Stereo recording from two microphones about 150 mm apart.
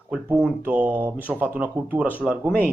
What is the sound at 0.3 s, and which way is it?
Speech, 10° right (ahead or behind).